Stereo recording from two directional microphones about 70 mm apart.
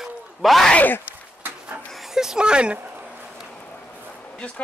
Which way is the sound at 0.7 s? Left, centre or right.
Left.